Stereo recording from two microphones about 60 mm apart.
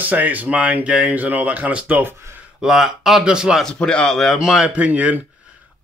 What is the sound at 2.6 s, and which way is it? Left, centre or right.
Speech, centre.